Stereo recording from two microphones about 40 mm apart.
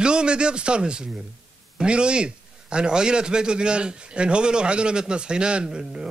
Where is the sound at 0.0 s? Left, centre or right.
Right.